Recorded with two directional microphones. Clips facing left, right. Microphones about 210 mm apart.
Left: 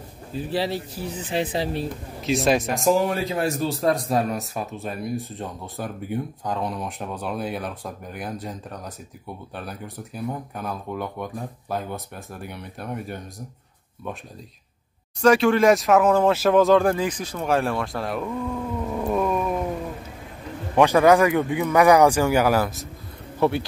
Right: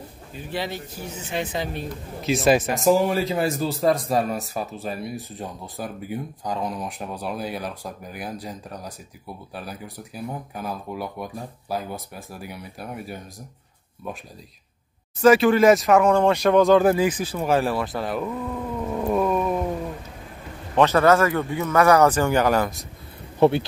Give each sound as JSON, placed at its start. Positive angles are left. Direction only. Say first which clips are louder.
{"t": 0.3, "sound": "speech", "louder": "left 5 dB", "side_deg": 35}
{"t": 2.2, "sound": "speech", "louder": "right 2 dB", "side_deg": 0}
{"t": 15.2, "sound": "speech", "louder": "right 2 dB", "side_deg": -5}
{"t": 20.7, "sound": "speech", "louder": "left 1 dB", "side_deg": 10}
{"t": 23.4, "sound": "speech", "louder": "right 4 dB", "side_deg": -20}